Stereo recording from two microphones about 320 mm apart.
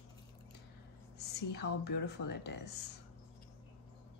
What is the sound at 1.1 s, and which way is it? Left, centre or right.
Speech, left.